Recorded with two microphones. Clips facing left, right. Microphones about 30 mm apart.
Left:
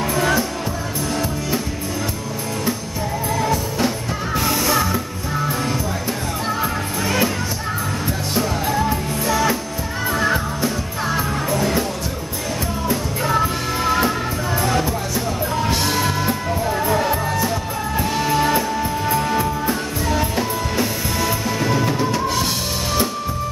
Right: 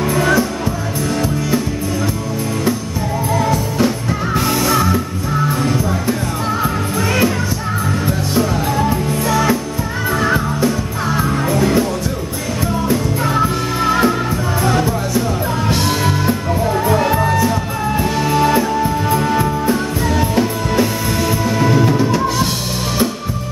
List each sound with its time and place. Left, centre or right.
0.1 s music: centre
3.3 s music: centre
12.8 s music: centre